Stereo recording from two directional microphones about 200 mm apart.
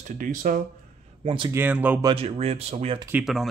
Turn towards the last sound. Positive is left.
turn(degrees=0)  # may be behind; listen again after turning